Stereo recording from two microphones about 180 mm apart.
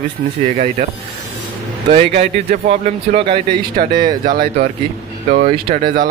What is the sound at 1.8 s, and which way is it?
Speech, 35° right (ahead or behind).